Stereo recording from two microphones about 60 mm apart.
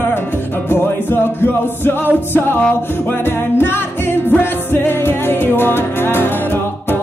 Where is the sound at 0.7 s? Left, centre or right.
Left.